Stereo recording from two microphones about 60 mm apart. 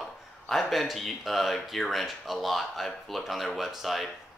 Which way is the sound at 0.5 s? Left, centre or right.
Centre.